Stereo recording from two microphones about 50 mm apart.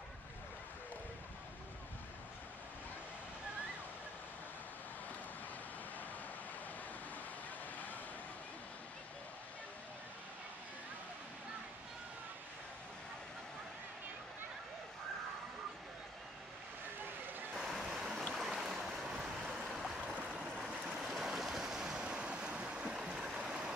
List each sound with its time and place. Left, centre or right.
17.6 s vehicle: centre
17.8 s a sound: centre
18.3 s stream: centre
21.0 s waves: centre
23.2 s stream: centre